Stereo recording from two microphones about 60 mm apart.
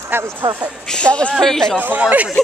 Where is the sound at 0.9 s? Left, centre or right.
Centre.